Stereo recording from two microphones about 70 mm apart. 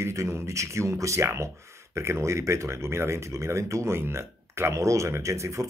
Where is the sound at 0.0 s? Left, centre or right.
Right.